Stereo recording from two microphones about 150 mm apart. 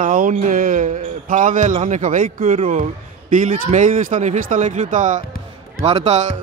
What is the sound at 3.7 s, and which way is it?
A man's voice, 55° right (ahead or behind).